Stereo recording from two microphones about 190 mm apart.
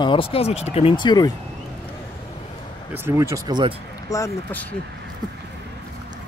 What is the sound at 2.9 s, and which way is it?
Speech, 15° right (ahead or behind).